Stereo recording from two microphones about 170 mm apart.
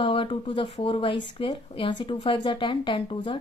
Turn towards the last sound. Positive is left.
turn(degrees=30)  # may be behind; listen again after turning